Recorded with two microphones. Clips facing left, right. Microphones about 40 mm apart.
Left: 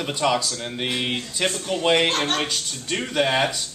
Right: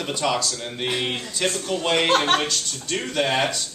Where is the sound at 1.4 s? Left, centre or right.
Centre.